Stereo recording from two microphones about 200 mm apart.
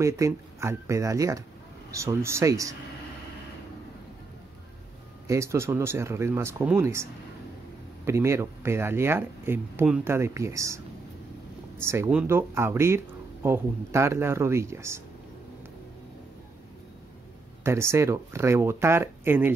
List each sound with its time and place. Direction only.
0.0 s speech: 15° right (ahead or behind)
5.3 s speech: 15° right (ahead or behind)
11.8 s speech: 15° right (ahead or behind)
17.6 s speech: 15° right (ahead or behind)